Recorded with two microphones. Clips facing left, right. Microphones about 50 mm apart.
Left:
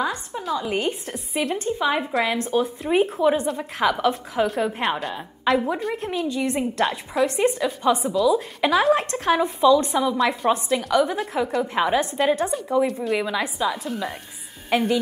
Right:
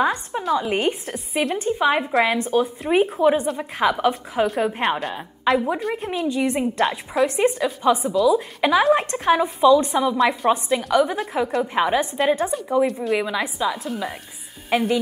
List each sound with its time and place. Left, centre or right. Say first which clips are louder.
0.0 s a woman's voice: right 5 dB; right
2.5 s a woman's voice: even; centre
6.2 s a woman's voice: right 4 dB; centre
6.8 s a woman's voice: right 1 dB; centre